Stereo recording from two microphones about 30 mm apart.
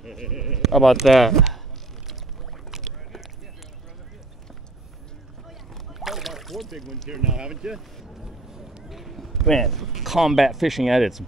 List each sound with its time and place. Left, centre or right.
0.3 s sheep: centre
0.6 s speech: centre
2.7 s rowboat: centre
5.5 s rowboat: centre
6.4 s rowboat: centre
7.2 s speech: right
8.5 s run: centre
8.8 s speech: centre